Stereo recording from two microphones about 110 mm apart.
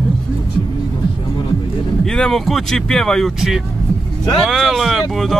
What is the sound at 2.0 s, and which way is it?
Speech, 5° left (ahead or behind).